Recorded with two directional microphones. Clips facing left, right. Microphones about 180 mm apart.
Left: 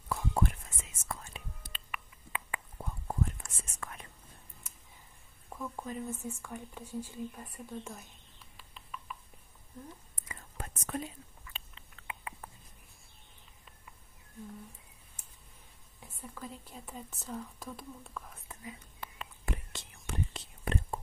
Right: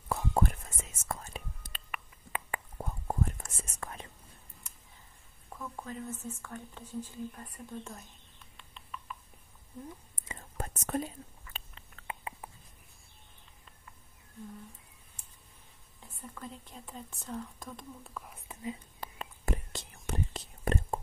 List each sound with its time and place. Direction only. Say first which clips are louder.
0.1 s whispering: right 2 dB; 45° right (ahead or behind)
5.6 s speech: left 2 dB; 15° left (ahead or behind)
8.5 s a sound: right 1 dB; 5° left (ahead or behind)
10.6 s whispering: right 4 dB; 40° right (ahead or behind)
16.2 s speech: even; 5° left (ahead or behind)
18.3 s whispering: right 7 dB; 20° right (ahead or behind)
18.9 s whispering: right 2 dB; 40° right (ahead or behind)